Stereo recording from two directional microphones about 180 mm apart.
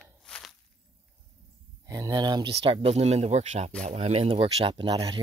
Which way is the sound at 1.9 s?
20° right (ahead or behind).